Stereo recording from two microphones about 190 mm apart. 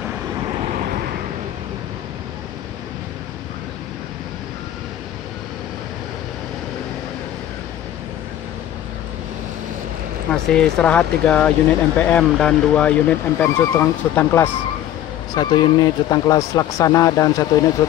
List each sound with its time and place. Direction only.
10.3 s speech: 5° left (ahead or behind)
15.3 s speech: 20° left (ahead or behind)